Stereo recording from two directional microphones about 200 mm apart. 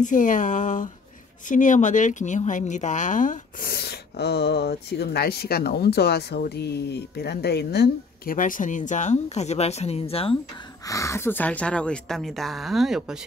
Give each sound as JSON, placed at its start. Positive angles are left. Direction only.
{"t": 0.0, "sound": "speech", "side_deg": 40}
{"t": 10.9, "sound": "a woman's voice", "side_deg": 15}